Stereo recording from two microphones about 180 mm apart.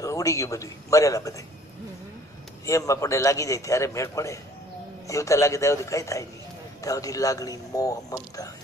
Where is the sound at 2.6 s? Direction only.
20° left (ahead or behind).